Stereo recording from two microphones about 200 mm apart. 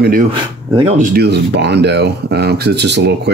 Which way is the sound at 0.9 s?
45° right (ahead or behind).